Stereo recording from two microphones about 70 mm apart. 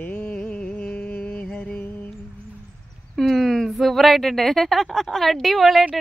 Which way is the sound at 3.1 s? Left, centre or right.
Centre.